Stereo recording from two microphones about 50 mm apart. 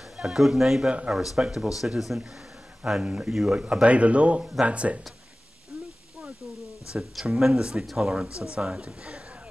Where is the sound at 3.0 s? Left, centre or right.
Right.